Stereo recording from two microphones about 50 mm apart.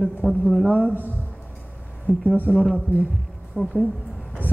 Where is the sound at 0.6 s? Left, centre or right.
Left.